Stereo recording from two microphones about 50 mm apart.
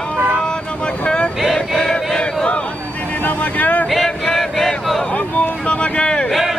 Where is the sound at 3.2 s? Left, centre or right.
Left.